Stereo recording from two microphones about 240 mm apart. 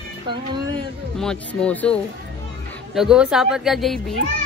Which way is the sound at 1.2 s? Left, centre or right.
Centre.